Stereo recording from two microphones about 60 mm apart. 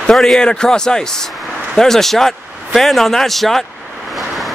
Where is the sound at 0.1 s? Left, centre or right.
Centre.